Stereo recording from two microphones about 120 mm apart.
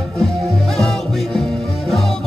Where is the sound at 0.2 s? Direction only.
5° left (ahead or behind).